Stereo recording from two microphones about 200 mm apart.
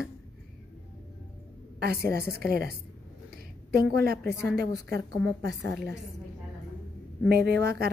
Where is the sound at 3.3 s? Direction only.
50° right (ahead or behind).